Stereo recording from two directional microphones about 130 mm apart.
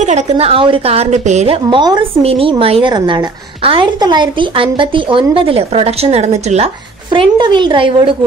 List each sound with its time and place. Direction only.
0.0 s a woman's voice: 55° right (ahead or behind)
7.1 s a woman's voice: 35° right (ahead or behind)